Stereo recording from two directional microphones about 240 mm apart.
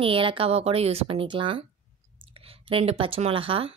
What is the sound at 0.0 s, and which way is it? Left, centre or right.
Speech, right.